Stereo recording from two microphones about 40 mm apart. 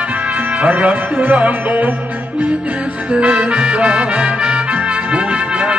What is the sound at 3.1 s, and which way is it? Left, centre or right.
Music, right.